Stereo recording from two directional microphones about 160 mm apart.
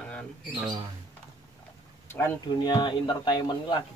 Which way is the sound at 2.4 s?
25° left (ahead or behind).